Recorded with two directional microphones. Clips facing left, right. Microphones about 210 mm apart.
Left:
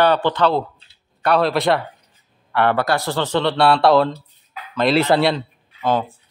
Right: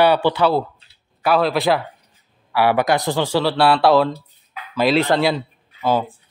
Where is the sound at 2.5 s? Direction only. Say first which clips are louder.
Right 1 dB; 10° right (ahead or behind).